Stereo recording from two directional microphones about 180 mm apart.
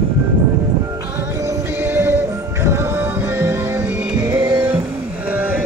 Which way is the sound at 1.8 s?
10° right (ahead or behind).